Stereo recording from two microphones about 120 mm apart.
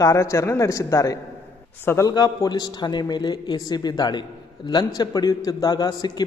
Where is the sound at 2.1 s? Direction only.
35° left (ahead or behind).